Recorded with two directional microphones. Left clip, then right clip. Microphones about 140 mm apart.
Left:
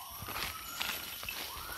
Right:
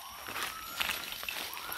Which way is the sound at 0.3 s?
Centre (ahead or behind).